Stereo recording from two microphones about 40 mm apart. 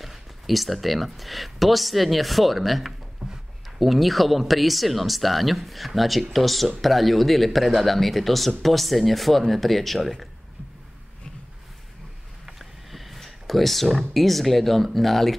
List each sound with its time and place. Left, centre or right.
0.0 s speech: centre
3.2 s a sound: centre
3.8 s speech: centre
12.4 s speech: centre